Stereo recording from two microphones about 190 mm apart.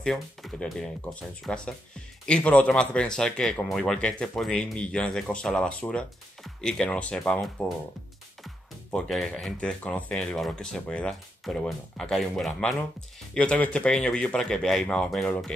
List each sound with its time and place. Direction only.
0.0 s speech: centre (ahead or behind)
8.9 s speech: centre (ahead or behind)